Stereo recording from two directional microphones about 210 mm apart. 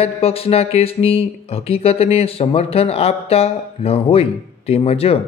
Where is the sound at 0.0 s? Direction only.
30° left (ahead or behind).